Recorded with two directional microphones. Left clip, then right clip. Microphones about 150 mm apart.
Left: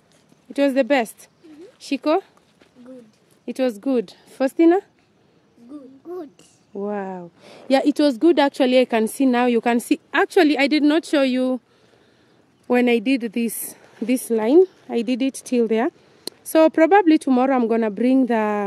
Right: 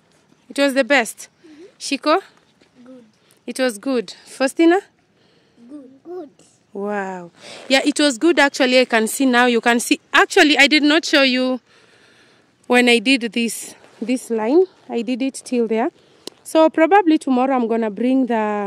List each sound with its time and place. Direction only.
0.5 s speech: 5° left (ahead or behind)
3.4 s speech: 5° left (ahead or behind)
4.0 s speech: 20° left (ahead or behind)
4.3 s speech: 5° left (ahead or behind)
6.8 s speech: centre (ahead or behind)
12.6 s speech: 10° right (ahead or behind)